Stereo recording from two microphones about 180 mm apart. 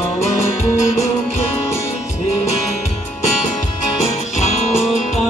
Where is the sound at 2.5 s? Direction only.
40° left (ahead or behind).